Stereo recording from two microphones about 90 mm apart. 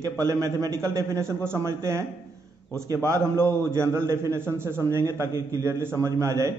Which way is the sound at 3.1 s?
30° right (ahead or behind).